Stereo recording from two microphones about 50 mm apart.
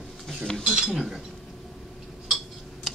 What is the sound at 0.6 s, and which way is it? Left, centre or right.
Cutlery, centre.